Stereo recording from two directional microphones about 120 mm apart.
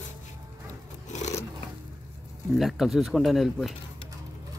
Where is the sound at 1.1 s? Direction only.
80° left.